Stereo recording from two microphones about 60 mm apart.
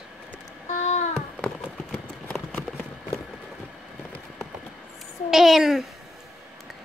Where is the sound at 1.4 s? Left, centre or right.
Left.